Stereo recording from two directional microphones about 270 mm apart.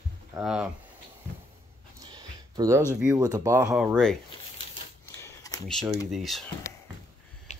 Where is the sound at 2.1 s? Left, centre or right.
Centre.